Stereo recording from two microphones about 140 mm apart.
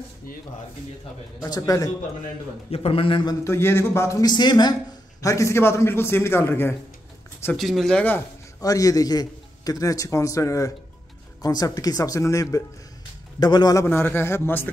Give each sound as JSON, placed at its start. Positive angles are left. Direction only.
{"t": 1.4, "sound": "a man's voice", "side_deg": 25}
{"t": 2.7, "sound": "a man's voice", "side_deg": 45}
{"t": 3.4, "sound": "a man's voice", "side_deg": 20}
{"t": 7.5, "sound": "speech", "side_deg": 0}
{"t": 8.5, "sound": "a man's voice", "side_deg": 25}
{"t": 13.8, "sound": "a man's voice", "side_deg": 15}